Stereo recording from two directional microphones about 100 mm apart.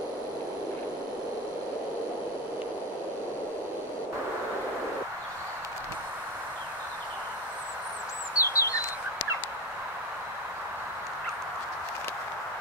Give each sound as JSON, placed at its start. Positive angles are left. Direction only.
{"t": 8.4, "sound": "bird", "side_deg": 30}